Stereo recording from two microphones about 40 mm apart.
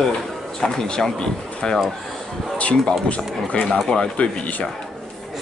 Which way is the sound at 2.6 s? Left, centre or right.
Left.